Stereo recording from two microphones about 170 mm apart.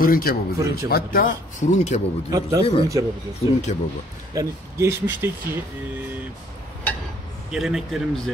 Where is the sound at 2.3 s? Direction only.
20° right (ahead or behind).